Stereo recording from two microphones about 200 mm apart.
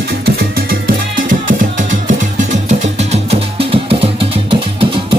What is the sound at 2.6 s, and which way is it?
Music, 35° right (ahead or behind).